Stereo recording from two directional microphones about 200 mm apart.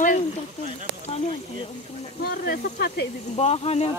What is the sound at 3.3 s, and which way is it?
Speech, 30° left (ahead or behind).